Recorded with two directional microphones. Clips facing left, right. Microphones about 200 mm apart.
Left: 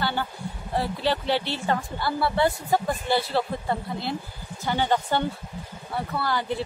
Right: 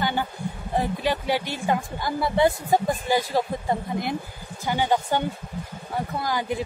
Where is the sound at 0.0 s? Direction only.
15° right (ahead or behind).